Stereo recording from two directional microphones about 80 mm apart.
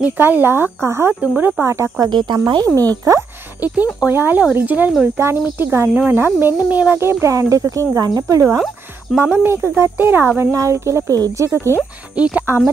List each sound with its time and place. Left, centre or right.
0.0 s speech: right
1.2 s speech: centre
1.6 s speech: right
2.0 s speech: right
3.6 s speech: centre
7.0 s speech: right
9.2 s speech: right
10.5 s speech: right
11.1 s speech: right
12.2 s speech: centre